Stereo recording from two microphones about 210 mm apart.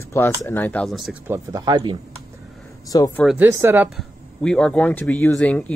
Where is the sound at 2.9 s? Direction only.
15° left (ahead or behind).